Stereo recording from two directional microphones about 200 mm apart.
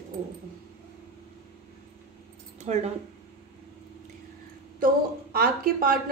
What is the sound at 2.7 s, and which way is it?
Speech, 35° right (ahead or behind).